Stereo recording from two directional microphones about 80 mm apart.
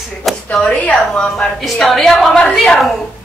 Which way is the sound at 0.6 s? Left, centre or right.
Centre.